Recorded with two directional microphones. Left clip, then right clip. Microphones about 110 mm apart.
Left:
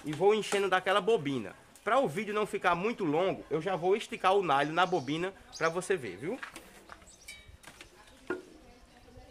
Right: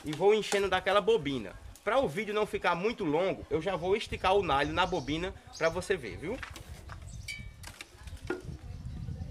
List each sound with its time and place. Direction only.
0.2 s speech: 15° left (ahead or behind)